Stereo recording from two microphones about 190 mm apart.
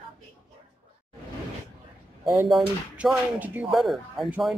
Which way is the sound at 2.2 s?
15° right (ahead or behind).